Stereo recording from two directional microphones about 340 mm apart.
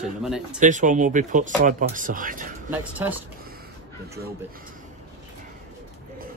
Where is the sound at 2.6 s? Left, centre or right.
Centre.